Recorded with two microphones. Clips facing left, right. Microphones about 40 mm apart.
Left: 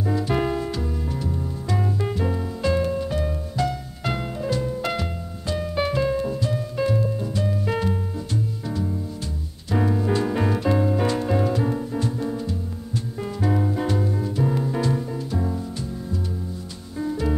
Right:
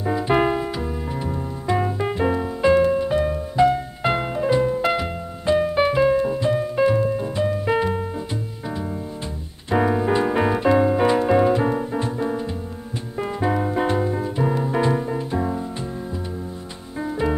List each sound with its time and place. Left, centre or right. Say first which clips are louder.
0.0 s music: right 4 dB; right
17.0 s music: right 2 dB; right